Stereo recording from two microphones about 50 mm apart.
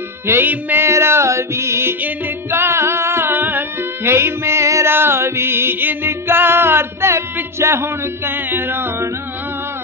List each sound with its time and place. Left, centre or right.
0.3 s music: right
0.7 s music: right
2.0 s music: right
2.5 s music: right
4.1 s music: right
4.8 s music: right
8.3 s music: right